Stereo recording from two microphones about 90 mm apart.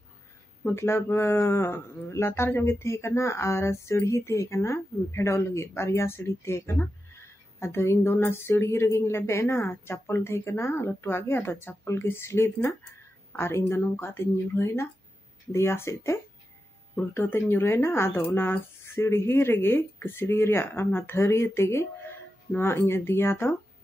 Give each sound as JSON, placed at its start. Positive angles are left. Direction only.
{"t": 0.7, "sound": "a woman's voice", "side_deg": 30}